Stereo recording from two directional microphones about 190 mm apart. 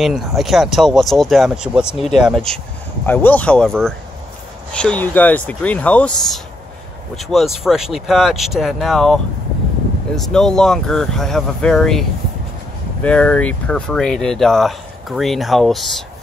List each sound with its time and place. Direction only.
0.0 s speech: centre (ahead or behind)